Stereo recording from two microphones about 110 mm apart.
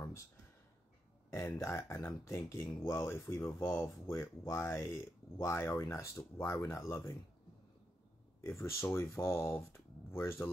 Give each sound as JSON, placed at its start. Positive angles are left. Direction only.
{"t": 1.3, "sound": "speech", "side_deg": 25}
{"t": 8.4, "sound": "speech", "side_deg": 25}